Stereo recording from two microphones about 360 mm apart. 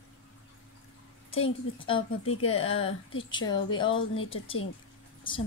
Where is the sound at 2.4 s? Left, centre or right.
Left.